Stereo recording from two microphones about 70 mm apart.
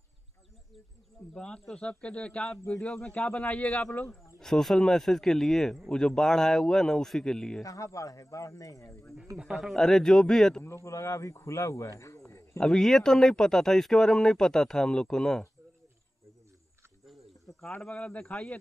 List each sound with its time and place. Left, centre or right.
1.3 s speech: centre
4.4 s speech: centre
7.6 s speech: left
9.4 s speech: centre
9.8 s speech: centre
10.6 s speech: left
12.5 s speech: centre
17.0 s cricket: centre
17.6 s speech: centre